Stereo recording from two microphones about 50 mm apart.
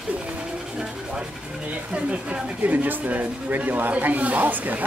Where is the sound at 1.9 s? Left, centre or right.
Right.